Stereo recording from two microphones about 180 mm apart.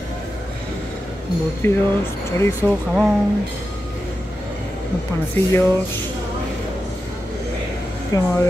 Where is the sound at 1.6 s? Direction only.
15° left (ahead or behind).